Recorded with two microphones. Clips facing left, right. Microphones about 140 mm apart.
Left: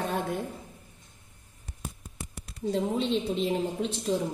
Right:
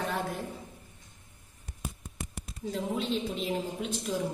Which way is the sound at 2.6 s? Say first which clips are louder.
Left 4 dB; 35° left (ahead or behind).